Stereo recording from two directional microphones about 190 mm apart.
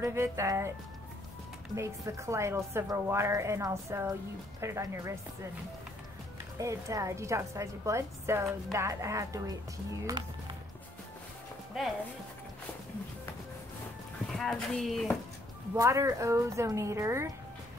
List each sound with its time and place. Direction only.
0.0 s a woman's voice: 15° right (ahead or behind)
1.8 s a woman's voice: 15° right (ahead or behind)
6.6 s a woman's voice: 15° right (ahead or behind)
14.2 s speech: centre (ahead or behind)
15.7 s a woman's voice: 15° right (ahead or behind)